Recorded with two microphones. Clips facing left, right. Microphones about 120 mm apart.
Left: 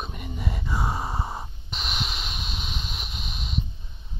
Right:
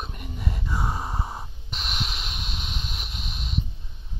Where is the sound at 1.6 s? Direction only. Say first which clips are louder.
Even; centre (ahead or behind).